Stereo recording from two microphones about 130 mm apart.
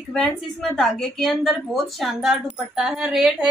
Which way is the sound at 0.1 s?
5° left (ahead or behind).